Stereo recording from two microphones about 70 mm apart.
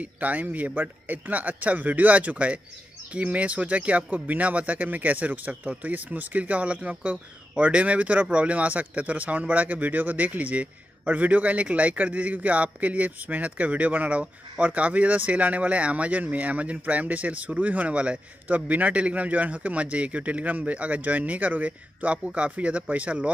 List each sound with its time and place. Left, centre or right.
0.0 s speech: right